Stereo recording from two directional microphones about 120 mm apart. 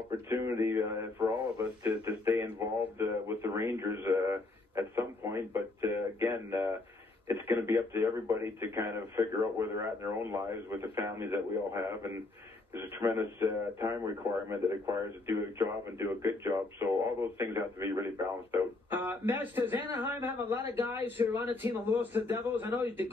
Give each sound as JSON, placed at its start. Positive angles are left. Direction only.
{"t": 0.3, "sound": "radio", "side_deg": -25}
{"t": 7.4, "sound": "a man's voice", "side_deg": -20}
{"t": 16.0, "sound": "speech", "side_deg": -25}